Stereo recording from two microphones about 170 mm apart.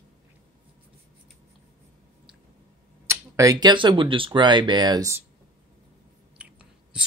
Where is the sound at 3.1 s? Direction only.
20° right (ahead or behind).